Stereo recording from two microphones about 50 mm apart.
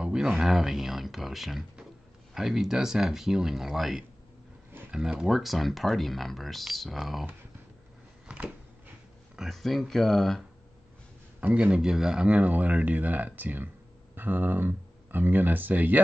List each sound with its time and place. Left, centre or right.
0.0 s speech: centre
5.2 s speech: centre
9.5 s speech: centre
11.5 s speech: right
12.3 s speech: right